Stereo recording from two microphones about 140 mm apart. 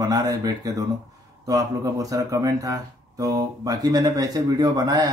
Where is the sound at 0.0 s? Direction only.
25° right (ahead or behind).